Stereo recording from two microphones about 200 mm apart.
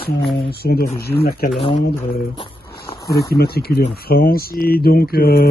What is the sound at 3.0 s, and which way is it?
A man's voice, 50° left (ahead or behind).